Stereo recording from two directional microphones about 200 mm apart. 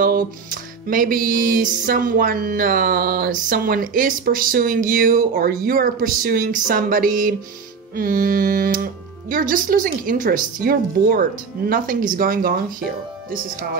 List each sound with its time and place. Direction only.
0.5 s speech: 45° right (ahead or behind)